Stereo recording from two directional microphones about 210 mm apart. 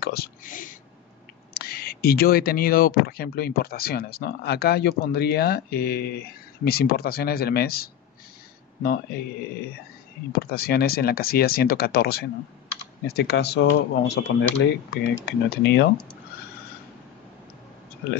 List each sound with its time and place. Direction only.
0.0 s speech: 45° left (ahead or behind)
10.3 s speech: 45° left (ahead or behind)